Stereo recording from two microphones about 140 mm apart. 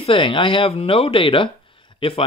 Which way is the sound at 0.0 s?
40° left (ahead or behind).